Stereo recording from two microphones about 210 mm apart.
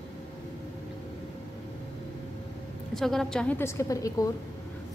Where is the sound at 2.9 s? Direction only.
Centre (ahead or behind).